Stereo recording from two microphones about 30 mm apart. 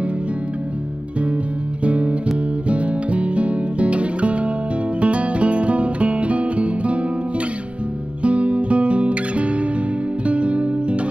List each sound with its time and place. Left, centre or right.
1.9 s music: right
8.2 s music: right